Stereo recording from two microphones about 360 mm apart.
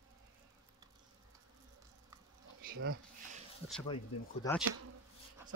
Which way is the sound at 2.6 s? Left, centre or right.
Right.